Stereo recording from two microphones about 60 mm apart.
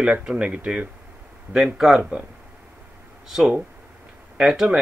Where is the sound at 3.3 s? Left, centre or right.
Centre.